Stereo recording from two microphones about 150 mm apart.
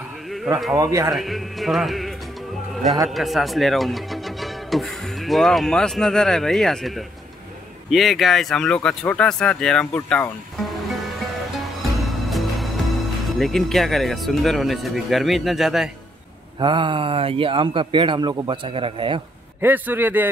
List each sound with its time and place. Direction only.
1.1 s speech: centre (ahead or behind)
16.5 s a man's voice: 35° right (ahead or behind)
19.6 s a man's voice: 15° right (ahead or behind)